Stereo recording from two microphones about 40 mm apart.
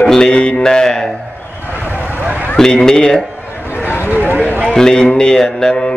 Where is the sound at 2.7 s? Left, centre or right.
Centre.